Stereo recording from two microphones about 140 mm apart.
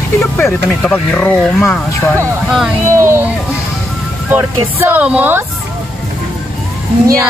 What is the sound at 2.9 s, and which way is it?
Speech, 15° right (ahead or behind).